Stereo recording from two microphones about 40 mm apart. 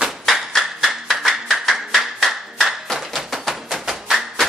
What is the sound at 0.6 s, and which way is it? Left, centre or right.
Clapping, centre.